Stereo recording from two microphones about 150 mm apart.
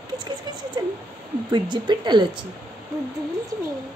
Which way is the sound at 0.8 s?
25° right (ahead or behind).